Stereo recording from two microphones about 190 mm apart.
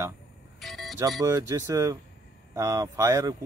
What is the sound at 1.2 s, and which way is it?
Speech, 15° right (ahead or behind).